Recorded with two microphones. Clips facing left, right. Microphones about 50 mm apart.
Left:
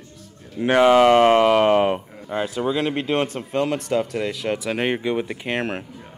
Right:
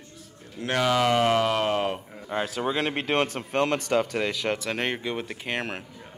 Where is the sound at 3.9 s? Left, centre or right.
Right.